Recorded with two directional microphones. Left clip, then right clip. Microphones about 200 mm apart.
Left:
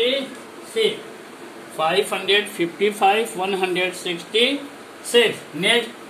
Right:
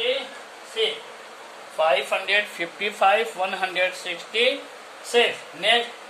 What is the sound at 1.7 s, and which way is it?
A man's voice, 20° right (ahead or behind).